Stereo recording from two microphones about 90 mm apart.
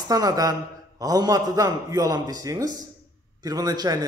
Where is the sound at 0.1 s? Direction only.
40° right (ahead or behind).